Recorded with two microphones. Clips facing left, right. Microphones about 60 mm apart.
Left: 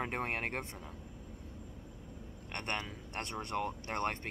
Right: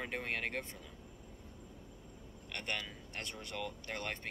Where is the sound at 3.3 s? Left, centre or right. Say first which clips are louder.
Left 6 dB; left.